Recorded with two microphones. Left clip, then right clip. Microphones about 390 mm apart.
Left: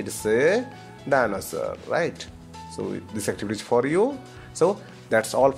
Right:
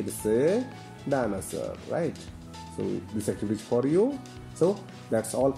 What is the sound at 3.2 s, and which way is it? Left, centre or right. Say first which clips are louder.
Speech: left 4 dB; left.